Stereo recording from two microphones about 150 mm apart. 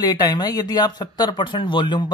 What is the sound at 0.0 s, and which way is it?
Speech, 25° left (ahead or behind).